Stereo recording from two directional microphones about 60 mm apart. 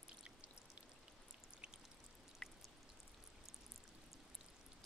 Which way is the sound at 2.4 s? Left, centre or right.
Centre.